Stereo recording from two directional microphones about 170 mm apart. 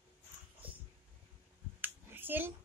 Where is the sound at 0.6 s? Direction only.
10° right (ahead or behind).